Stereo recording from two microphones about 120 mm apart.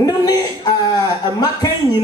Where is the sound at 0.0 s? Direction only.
30° left (ahead or behind).